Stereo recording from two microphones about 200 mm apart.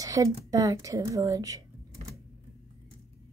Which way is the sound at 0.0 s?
15° right (ahead or behind).